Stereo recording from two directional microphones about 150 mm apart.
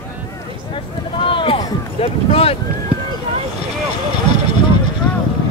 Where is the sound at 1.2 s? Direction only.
35° left (ahead or behind).